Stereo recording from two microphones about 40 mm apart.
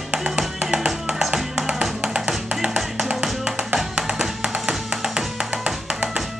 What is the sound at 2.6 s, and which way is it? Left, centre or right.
Music, centre.